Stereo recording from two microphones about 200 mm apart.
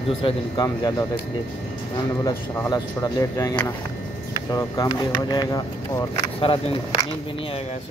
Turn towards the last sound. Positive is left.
turn(degrees=25)  # may be behind; listen again after turning